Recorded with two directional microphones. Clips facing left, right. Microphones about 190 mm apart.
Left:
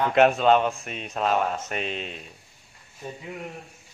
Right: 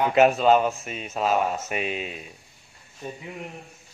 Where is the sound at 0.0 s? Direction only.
5° right (ahead or behind).